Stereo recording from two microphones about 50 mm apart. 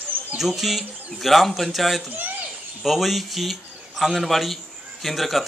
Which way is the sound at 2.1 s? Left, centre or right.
Right.